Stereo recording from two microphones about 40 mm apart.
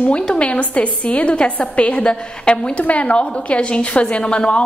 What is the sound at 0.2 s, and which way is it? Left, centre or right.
Speech, left.